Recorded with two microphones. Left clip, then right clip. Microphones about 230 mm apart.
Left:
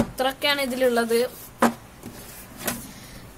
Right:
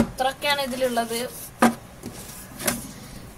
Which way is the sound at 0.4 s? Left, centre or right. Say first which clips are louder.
Left 4 dB; left.